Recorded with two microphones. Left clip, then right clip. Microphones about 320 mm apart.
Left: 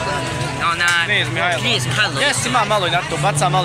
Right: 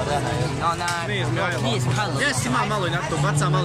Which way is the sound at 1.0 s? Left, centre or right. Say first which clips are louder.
Left 7 dB; centre.